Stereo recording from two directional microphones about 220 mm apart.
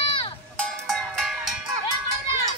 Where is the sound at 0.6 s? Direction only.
Centre (ahead or behind).